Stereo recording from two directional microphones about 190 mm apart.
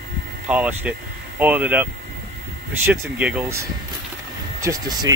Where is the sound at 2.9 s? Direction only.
10° right (ahead or behind).